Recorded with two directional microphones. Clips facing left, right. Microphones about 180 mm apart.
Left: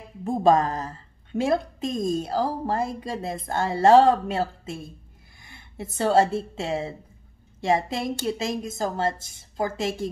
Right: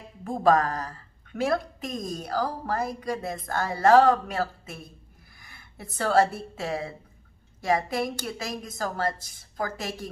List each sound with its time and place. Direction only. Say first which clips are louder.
0.2 s a woman's voice: left 2 dB; 25° left (ahead or behind)